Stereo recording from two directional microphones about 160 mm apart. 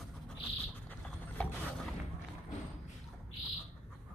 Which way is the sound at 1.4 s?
10° left (ahead or behind).